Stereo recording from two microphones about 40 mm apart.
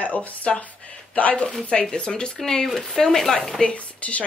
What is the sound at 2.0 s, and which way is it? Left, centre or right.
Speech, left.